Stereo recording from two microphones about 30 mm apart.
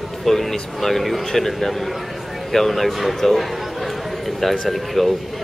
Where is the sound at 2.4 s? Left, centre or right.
Centre.